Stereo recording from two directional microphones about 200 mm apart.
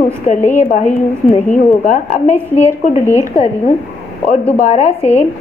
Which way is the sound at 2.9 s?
15° right (ahead or behind).